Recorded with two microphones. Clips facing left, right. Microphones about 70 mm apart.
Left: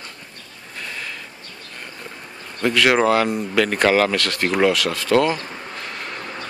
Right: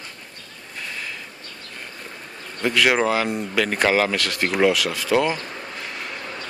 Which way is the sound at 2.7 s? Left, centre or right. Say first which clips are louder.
Left 3 dB; centre.